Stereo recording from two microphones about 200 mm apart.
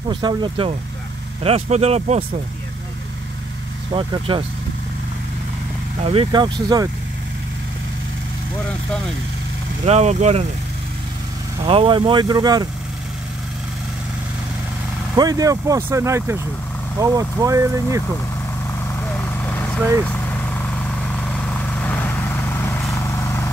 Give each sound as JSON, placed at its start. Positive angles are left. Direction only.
{"t": 0.1, "sound": "speech", "side_deg": -20}
{"t": 3.9, "sound": "speech", "side_deg": -25}
{"t": 5.9, "sound": "speech", "side_deg": -30}
{"t": 9.8, "sound": "speech", "side_deg": -35}
{"t": 11.6, "sound": "speech", "side_deg": -25}
{"t": 15.1, "sound": "speech", "side_deg": -20}
{"t": 18.9, "sound": "vehicle", "side_deg": 10}